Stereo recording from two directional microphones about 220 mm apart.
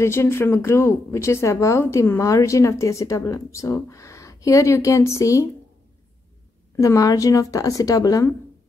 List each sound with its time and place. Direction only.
0.0 s speech: 10° left (ahead or behind)
6.8 s speech: 15° left (ahead or behind)